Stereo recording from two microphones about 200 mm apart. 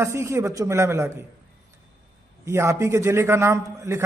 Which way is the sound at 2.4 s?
15° right (ahead or behind).